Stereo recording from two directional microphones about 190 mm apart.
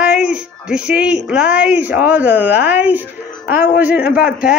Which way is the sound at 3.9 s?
50° left (ahead or behind).